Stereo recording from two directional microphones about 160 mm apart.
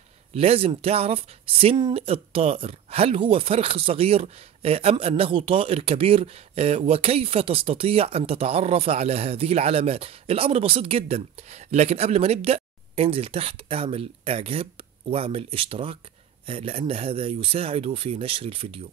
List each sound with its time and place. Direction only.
0.3 s speech: 40° right (ahead or behind)